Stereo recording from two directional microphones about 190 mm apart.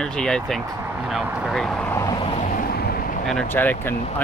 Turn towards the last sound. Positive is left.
turn(degrees=10)  # may be behind; listen again after turning